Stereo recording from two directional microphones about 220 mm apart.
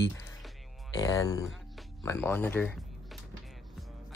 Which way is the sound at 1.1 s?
15° left (ahead or behind).